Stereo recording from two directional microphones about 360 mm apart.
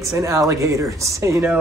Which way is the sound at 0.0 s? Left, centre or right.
Centre.